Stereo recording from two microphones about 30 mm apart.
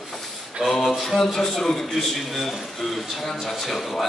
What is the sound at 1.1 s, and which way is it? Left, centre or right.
Speech, centre.